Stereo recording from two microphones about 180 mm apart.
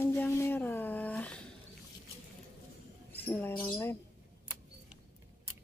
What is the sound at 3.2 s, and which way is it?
Speech, 10° left (ahead or behind).